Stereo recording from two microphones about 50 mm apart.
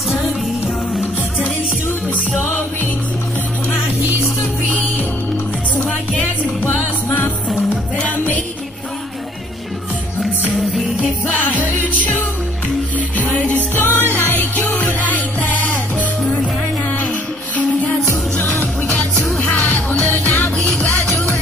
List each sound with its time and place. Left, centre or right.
6.8 s music: left
11.5 s music: left
13.7 s music: left
19.4 s music: left